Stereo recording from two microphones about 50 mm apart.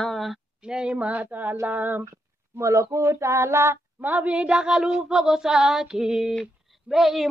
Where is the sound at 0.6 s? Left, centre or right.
Centre; by 1.5 s right.